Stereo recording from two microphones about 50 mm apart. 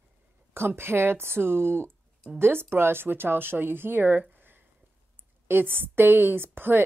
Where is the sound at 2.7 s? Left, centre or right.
Right.